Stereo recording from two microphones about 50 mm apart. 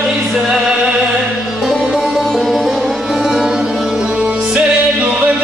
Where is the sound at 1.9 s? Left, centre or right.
Centre; by 5.4 s right.